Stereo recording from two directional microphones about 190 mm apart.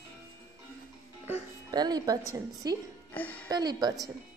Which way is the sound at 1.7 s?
20° right (ahead or behind).